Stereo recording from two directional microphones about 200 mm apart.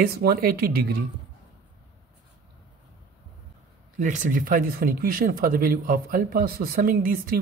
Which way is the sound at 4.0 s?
40° right (ahead or behind).